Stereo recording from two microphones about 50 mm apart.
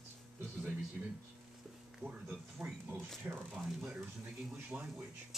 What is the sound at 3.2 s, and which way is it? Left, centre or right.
Speech, right.